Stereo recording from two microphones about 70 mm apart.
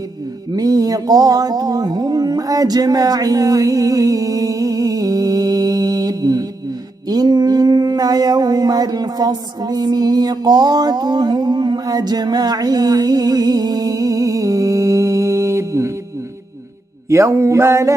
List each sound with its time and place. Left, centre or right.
0.5 s music: right
7.1 s mantra: right
17.1 s mantra: right